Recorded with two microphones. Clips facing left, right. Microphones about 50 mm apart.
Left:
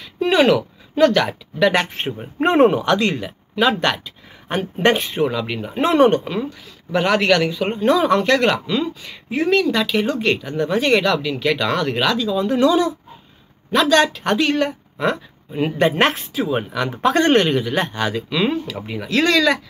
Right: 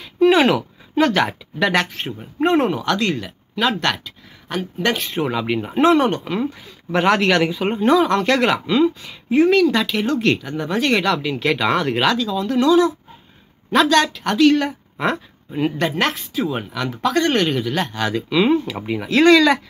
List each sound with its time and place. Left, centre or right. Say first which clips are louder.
0.0 s speech: right 2 dB; centre
1.9 s speech: left 3 dB; left; by 4.1 s centre
4.5 s speech: left 4 dB; left
5.0 s speech: left 2 dB; centre
5.3 s speech: right 2 dB; centre
5.8 s speech: left 1 dB; centre
12.2 s speech: left 2 dB; centre
13.7 s speech: even; centre
14.7 s a sound: left 1 dB; centre
15.9 s speech: left 3 dB; left
16.3 s speech: left 2 dB; centre
16.9 s speech: left 3 dB; left
17.6 s speech: left 1 dB; centre
18.0 s speech: right 3 dB; centre